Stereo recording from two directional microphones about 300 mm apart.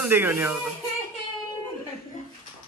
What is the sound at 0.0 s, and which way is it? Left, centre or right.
Speech, centre.